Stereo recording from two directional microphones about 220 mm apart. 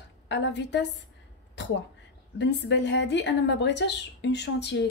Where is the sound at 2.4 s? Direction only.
55° left (ahead or behind).